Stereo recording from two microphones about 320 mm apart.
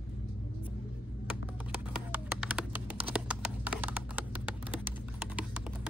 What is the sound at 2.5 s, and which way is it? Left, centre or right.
Typing, centre.